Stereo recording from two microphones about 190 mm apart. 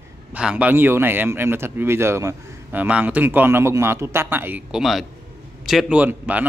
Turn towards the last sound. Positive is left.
turn(degrees=-10)  # may be behind; listen again after turning